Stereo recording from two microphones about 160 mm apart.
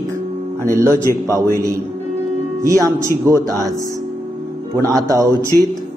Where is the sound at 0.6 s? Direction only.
15° right (ahead or behind).